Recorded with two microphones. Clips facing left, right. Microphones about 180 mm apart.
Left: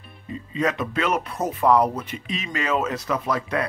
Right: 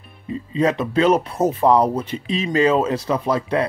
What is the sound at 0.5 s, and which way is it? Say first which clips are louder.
Speech: right 5 dB; 30° right (ahead or behind).